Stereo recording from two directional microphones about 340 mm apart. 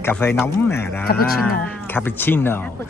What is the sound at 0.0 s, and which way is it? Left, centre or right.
Speech, centre.